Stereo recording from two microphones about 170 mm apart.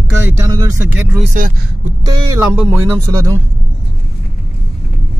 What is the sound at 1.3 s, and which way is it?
Vehicle, 50° right (ahead or behind).